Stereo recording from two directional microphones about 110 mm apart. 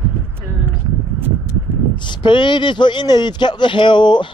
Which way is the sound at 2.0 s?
45° left (ahead or behind).